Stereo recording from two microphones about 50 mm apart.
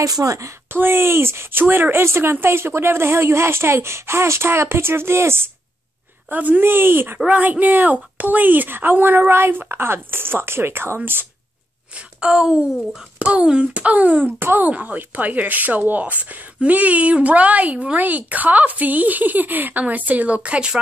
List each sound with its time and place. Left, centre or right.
0.2 s a woman's voice: right
6.3 s a woman's voice: right
6.6 s a woman's voice: right
7.2 s a woman's voice: right
9.3 s a woman's voice: right
12.2 s a woman's voice: centre; by 14.2 s right
14.2 s a woman's voice: right